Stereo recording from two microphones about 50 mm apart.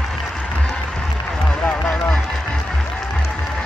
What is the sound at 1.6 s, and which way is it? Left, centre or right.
Run, left.